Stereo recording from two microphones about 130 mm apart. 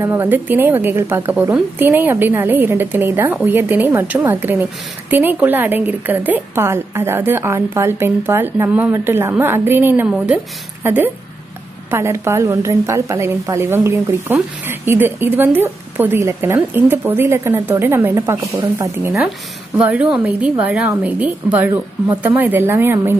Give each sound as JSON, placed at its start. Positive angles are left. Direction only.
{"t": 0.0, "sound": "a woman's voice", "side_deg": -15}
{"t": 19.8, "sound": "a woman's voice", "side_deg": -10}